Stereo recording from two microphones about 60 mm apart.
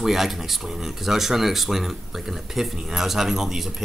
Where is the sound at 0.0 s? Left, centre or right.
Centre.